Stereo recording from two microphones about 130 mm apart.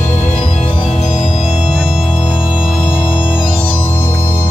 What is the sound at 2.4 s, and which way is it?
Organ, 40° left (ahead or behind).